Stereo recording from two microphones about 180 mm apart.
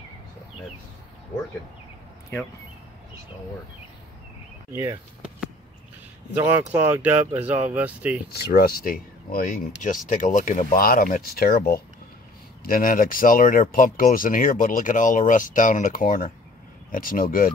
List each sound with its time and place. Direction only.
4.7 s speech: 10° right (ahead or behind)
6.3 s speech: 10° right (ahead or behind)
8.3 s speech: 60° left (ahead or behind)